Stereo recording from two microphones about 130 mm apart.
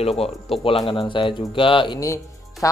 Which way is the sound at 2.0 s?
25° left (ahead or behind).